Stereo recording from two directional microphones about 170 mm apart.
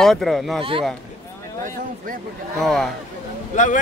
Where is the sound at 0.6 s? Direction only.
30° right (ahead or behind).